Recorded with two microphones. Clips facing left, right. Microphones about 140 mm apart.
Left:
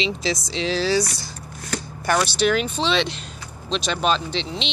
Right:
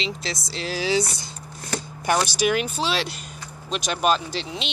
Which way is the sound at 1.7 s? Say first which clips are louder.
Left 1 dB; 20° right (ahead or behind).